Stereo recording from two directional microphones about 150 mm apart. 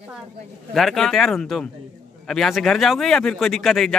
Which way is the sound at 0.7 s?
Centre (ahead or behind).